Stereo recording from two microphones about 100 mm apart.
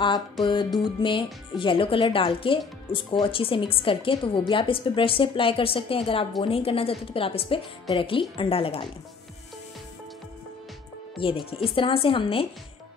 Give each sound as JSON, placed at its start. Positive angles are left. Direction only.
{"t": 0.0, "sound": "music", "side_deg": 50}
{"t": 0.7, "sound": "a woman's voice", "side_deg": 55}
{"t": 11.1, "sound": "a woman's voice", "side_deg": 60}